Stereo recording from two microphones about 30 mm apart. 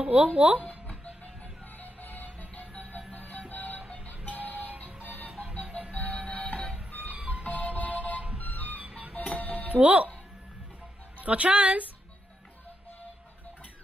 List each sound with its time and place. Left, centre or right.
0.0 s a woman's voice: right
1.8 s music: left
3.3 s music: left
4.3 s music: left
5.0 s music: left
5.7 s music: right
6.0 s music: left
7.4 s music: left
9.4 s music: left
9.8 s a woman's voice: right
11.1 s a woman's voice: right